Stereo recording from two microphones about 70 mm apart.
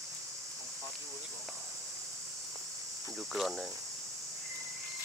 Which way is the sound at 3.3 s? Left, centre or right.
Centre.